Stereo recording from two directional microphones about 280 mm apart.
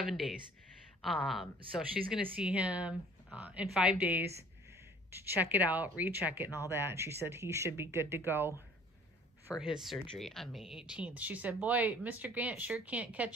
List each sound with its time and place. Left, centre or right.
0.0 s speech: centre
5.4 s speech: centre
9.6 s speech: centre